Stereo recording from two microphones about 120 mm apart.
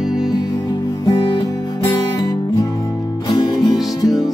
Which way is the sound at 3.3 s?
35° left (ahead or behind).